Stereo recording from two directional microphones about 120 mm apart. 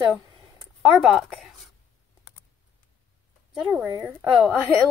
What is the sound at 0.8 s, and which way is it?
Speech, 5° right (ahead or behind).